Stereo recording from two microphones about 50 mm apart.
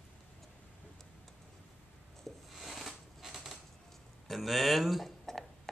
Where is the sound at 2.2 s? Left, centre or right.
Centre.